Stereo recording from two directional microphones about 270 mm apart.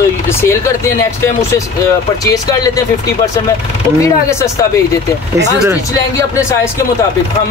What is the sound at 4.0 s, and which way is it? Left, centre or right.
Speech, centre.